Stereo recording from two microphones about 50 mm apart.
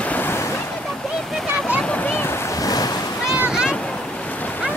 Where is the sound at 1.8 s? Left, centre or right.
Left.